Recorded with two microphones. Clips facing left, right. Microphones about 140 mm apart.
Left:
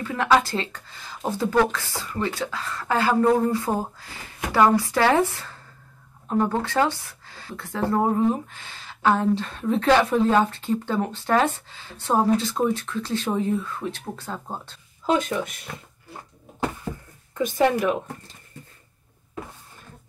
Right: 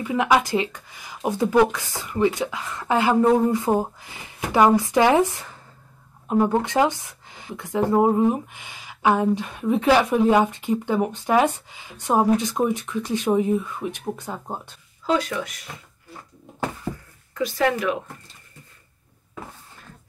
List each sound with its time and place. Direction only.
0.0 s speech: 15° right (ahead or behind)
17.6 s speech: 20° left (ahead or behind)